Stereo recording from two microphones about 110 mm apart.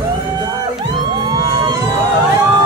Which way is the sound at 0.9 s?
40° right (ahead or behind).